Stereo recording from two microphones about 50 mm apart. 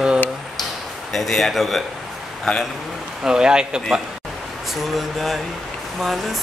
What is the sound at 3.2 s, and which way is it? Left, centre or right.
Speech, centre.